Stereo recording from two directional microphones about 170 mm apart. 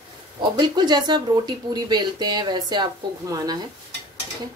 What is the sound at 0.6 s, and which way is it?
Speech, 25° right (ahead or behind).